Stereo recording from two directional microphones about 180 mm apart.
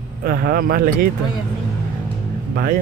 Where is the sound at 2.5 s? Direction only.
55° right (ahead or behind).